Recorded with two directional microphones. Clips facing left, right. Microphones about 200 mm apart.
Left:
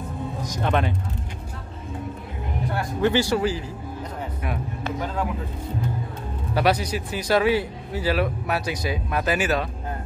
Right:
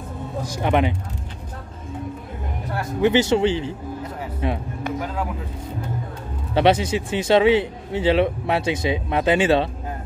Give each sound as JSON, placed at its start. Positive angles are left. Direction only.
{"t": 0.5, "sound": "speech", "side_deg": -15}
{"t": 3.0, "sound": "speech", "side_deg": -20}
{"t": 4.8, "sound": "a sound", "side_deg": -10}
{"t": 6.5, "sound": "speech", "side_deg": -25}